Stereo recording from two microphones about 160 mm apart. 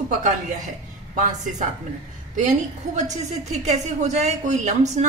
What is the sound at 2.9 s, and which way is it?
A woman's voice, 45° right (ahead or behind).